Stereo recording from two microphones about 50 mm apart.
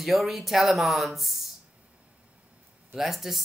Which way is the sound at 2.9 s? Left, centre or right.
Centre.